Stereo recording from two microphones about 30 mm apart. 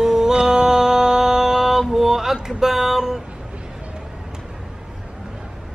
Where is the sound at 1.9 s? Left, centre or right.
Centre.